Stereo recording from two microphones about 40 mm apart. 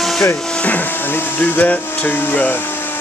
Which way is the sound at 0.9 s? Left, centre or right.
Left.